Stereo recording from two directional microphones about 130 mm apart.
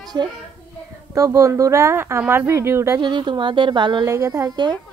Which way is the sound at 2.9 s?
35° right (ahead or behind).